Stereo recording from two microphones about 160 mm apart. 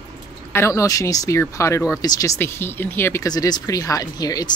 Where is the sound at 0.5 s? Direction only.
20° left (ahead or behind).